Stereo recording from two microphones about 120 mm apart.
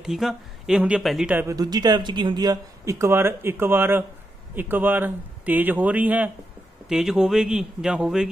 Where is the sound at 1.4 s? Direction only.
30° right (ahead or behind).